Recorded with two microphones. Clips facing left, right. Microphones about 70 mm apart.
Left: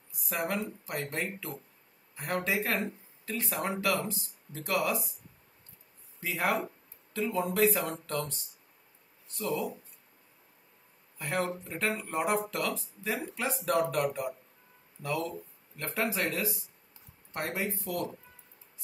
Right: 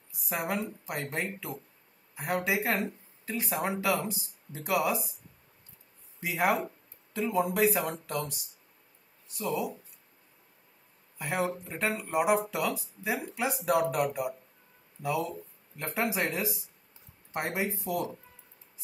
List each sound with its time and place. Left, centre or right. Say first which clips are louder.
0.3 s speech: even; centre
6.2 s speech: right 2 dB; centre
9.4 s speech: right 1 dB; centre
11.1 s speech: right 1 dB; centre